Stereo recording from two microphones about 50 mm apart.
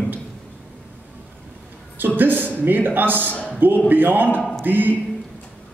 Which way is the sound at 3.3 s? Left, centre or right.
Left.